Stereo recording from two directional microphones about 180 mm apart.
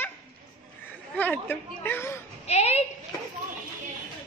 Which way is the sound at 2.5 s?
35° left (ahead or behind).